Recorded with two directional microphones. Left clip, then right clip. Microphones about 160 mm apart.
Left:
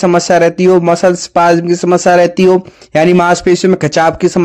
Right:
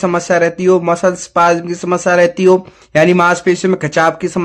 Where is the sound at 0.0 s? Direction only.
30° left (ahead or behind).